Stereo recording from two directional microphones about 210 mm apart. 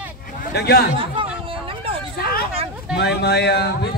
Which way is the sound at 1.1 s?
25° right (ahead or behind).